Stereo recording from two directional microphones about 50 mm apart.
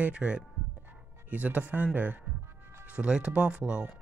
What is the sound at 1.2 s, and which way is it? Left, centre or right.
Speech, right.